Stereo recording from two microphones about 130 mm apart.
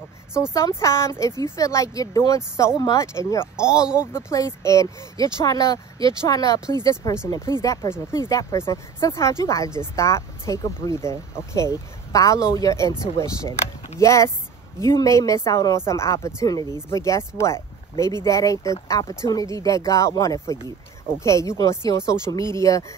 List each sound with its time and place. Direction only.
0.5 s speech: 25° left (ahead or behind)